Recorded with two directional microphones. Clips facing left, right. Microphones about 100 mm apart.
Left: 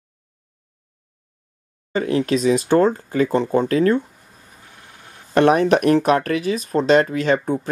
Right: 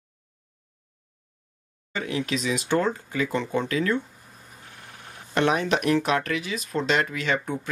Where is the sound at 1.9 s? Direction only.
40° left (ahead or behind).